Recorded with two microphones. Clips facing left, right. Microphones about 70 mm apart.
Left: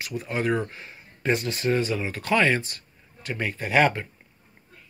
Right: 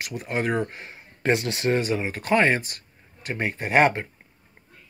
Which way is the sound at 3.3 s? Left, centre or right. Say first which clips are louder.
Right 1 dB; right.